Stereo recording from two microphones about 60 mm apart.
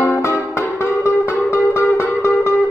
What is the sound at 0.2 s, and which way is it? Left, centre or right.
Music, left.